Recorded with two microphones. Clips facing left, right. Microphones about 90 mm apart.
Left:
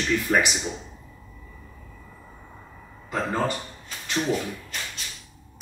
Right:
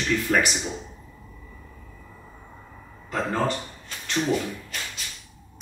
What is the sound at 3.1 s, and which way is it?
Speech, centre (ahead or behind).